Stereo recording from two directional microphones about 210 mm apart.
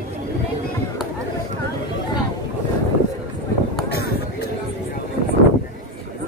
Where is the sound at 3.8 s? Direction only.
50° left (ahead or behind).